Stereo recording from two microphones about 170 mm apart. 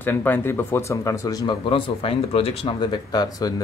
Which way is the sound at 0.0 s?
10° left (ahead or behind).